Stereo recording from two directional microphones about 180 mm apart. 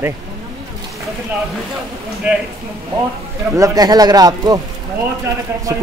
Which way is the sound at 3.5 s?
20° right (ahead or behind).